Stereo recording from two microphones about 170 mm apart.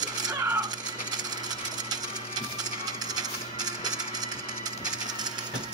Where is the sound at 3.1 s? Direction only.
25° right (ahead or behind).